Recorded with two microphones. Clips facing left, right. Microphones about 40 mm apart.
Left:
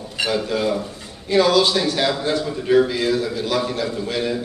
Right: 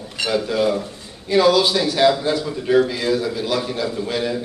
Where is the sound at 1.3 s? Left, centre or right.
Centre.